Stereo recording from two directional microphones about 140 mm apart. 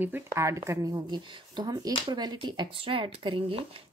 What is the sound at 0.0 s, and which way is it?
A woman's voice, 15° right (ahead or behind).